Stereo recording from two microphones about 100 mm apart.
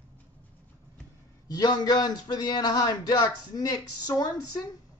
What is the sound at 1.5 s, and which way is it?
Speech, 40° left (ahead or behind).